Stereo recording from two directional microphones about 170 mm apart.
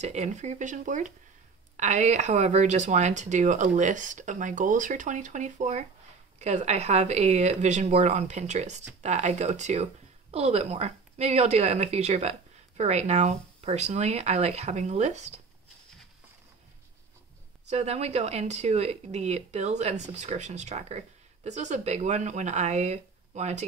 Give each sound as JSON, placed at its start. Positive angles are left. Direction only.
{"t": 0.0, "sound": "speech", "side_deg": -40}
{"t": 17.6, "sound": "speech", "side_deg": -40}